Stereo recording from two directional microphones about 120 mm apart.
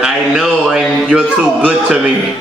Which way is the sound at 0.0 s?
5° right (ahead or behind).